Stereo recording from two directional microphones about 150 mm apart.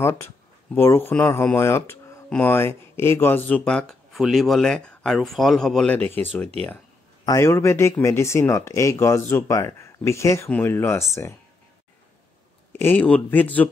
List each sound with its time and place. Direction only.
0.7 s speech: 15° left (ahead or behind)
7.2 s speech: 20° left (ahead or behind)
12.7 s speech: 15° left (ahead or behind)